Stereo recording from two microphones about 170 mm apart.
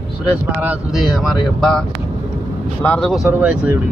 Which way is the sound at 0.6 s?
5° right (ahead or behind).